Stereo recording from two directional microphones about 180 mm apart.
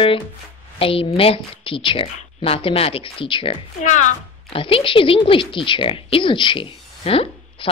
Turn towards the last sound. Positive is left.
turn(degrees=30)  # may be behind; listen again after turning